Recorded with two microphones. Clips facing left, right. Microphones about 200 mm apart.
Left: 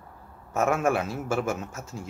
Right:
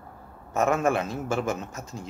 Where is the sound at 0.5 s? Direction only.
5° left (ahead or behind).